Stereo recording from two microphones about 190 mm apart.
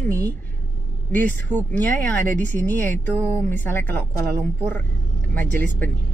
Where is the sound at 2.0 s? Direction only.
10° left (ahead or behind).